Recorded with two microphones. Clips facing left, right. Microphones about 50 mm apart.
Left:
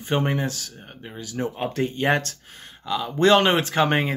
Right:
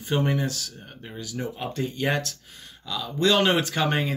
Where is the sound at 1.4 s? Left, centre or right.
Left.